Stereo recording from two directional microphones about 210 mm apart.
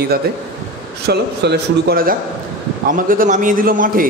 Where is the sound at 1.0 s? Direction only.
50° right (ahead or behind).